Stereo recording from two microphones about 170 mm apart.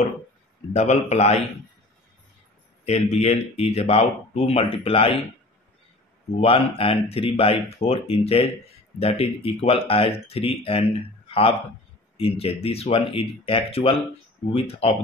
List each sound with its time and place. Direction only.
0.7 s speech: 40° left (ahead or behind)
2.8 s speech: 40° left (ahead or behind)
6.4 s speech: 35° left (ahead or behind)